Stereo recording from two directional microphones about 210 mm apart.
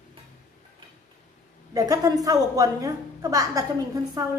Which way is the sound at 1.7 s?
15° right (ahead or behind).